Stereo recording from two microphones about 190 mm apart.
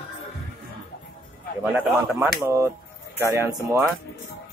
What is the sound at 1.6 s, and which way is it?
Speech, 5° right (ahead or behind).